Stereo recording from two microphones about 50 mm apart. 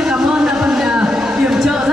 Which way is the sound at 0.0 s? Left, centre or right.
Centre.